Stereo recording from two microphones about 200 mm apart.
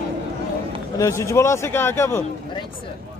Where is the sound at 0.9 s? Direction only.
15° left (ahead or behind).